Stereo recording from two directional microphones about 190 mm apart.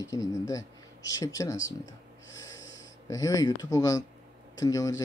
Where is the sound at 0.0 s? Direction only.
15° left (ahead or behind).